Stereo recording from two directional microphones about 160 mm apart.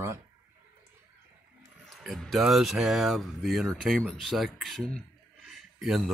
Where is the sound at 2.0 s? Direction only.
Centre (ahead or behind).